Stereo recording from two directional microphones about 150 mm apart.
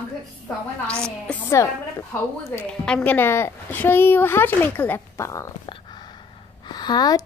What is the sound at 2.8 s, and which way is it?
A woman's voice, 10° left (ahead or behind).